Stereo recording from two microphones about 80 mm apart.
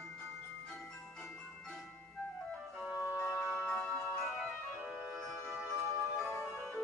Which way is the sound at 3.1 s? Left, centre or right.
Centre.